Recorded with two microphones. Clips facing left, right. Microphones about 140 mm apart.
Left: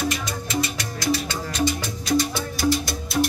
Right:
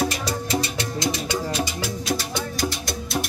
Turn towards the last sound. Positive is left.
turn(degrees=0)  # may be behind; listen again after turning